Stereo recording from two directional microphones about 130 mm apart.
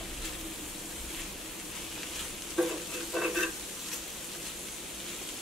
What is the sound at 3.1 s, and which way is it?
Stir, centre (ahead or behind).